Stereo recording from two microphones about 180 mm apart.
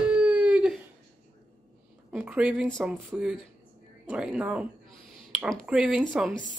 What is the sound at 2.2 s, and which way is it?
A woman's voice, 5° right (ahead or behind).